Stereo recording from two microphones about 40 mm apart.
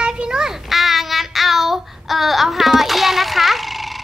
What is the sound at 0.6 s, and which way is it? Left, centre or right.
Child singing, centre.